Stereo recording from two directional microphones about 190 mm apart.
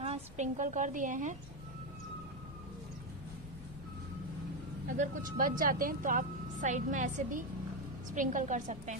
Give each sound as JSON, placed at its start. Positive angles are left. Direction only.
{"t": 0.0, "sound": "a woman's voice", "side_deg": -35}
{"t": 4.8, "sound": "a woman's voice", "side_deg": -40}